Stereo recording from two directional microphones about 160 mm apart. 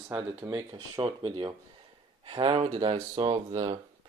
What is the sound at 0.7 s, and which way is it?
Speech, 35° right (ahead or behind).